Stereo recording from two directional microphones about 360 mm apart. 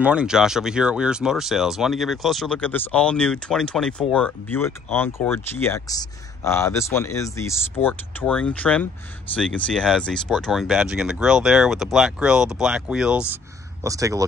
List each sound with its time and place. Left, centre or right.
0.0 s speech: centre